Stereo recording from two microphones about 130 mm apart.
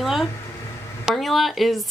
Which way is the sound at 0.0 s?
Centre (ahead or behind).